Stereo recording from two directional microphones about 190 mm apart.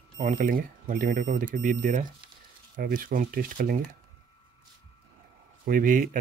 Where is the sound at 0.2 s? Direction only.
45° right (ahead or behind).